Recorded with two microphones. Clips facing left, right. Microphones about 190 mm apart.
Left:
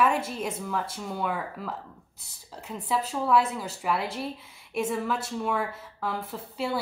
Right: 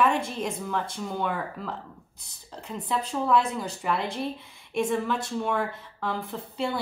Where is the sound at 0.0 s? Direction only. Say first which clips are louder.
Right 1 dB; 5° left (ahead or behind).